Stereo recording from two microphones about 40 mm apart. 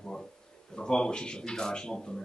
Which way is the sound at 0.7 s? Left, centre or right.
Centre.